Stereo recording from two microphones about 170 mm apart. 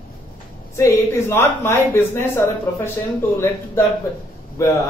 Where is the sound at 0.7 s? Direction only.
15° left (ahead or behind).